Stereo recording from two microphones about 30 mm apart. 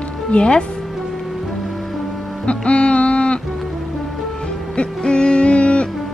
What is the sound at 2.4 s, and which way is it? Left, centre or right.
Music, left.